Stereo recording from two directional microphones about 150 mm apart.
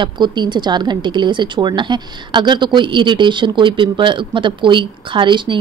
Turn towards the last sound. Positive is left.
turn(degrees=-30)  # may be behind; listen again after turning